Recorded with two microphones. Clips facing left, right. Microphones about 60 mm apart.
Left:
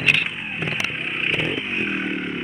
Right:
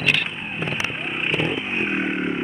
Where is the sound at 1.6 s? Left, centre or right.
Right.